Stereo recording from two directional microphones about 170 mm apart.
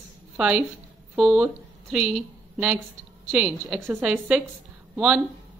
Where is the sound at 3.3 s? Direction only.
5° right (ahead or behind).